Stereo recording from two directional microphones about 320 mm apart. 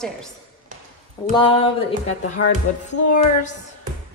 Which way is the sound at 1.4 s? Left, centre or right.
Centre.